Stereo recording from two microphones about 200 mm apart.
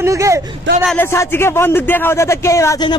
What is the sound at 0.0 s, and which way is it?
Speech, 15° right (ahead or behind).